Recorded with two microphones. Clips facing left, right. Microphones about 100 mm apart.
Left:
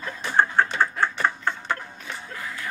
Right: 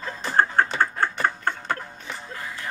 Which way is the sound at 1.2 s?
40° right (ahead or behind).